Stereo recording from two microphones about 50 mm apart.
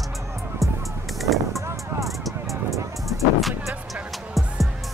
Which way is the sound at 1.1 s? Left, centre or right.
Centre.